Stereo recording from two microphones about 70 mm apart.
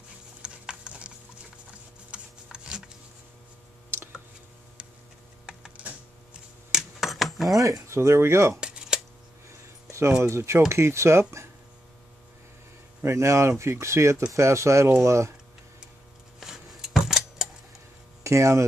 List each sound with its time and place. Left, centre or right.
0.4 s a sound: centre
5.5 s typing: centre
6.7 s keys jangling: centre
7.5 s speech: right
8.5 s a sound: centre
10.2 s speech: right
13.0 s speech: right
16.3 s a sound: centre
18.2 s speech: right